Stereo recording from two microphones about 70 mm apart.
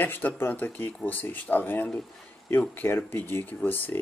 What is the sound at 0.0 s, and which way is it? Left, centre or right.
Speech, left.